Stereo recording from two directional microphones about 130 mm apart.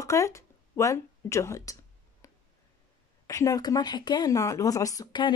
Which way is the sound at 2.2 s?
25° left (ahead or behind).